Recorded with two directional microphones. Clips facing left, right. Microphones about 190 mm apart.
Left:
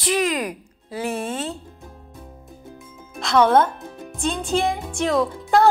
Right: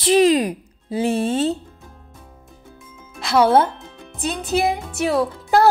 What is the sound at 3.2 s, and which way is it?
Speech, 5° right (ahead or behind).